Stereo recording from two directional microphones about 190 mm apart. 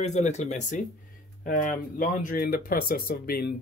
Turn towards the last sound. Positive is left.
turn(degrees=50)  # may be behind; listen again after turning